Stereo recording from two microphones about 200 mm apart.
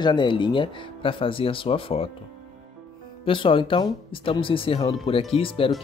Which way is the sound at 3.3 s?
25° left (ahead or behind).